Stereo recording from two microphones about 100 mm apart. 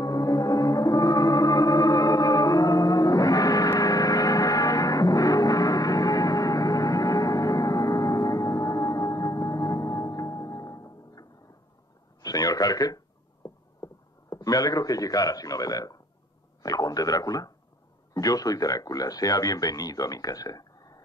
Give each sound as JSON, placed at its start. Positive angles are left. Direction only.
{"t": 0.0, "sound": "music", "side_deg": 35}
{"t": 12.2, "sound": "a sound", "side_deg": 40}
{"t": 14.3, "sound": "a man's voice", "side_deg": 35}